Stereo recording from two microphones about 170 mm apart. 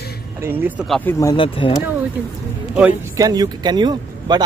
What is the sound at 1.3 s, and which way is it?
Speech, 30° left (ahead or behind).